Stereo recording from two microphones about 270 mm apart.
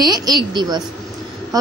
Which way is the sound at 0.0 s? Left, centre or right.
Centre.